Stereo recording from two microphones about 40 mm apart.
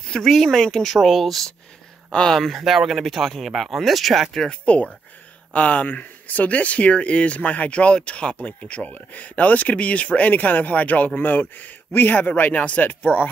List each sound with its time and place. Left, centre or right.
0.3 s speech: centre
0.8 s speech: centre
2.0 s speech: centre
2.3 s speech: centre
4.5 s speech: left
11.1 s speech: left